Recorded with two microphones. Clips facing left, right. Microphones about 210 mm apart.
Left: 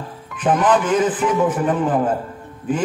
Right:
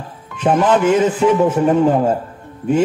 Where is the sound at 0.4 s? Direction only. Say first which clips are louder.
Right 3 dB; 25° right (ahead or behind).